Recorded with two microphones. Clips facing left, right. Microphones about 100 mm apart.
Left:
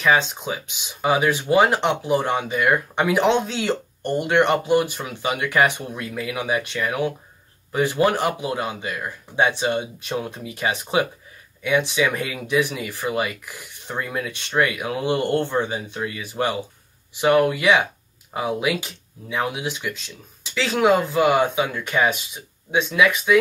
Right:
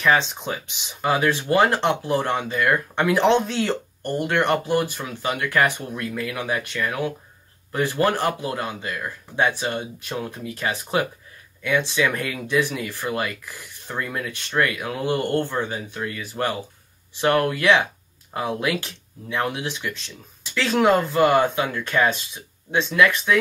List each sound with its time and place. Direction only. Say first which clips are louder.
0.0 s speech: left 1 dB; 5° left (ahead or behind)